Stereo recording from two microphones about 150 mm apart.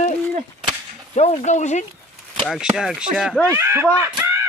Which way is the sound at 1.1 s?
50° left (ahead or behind).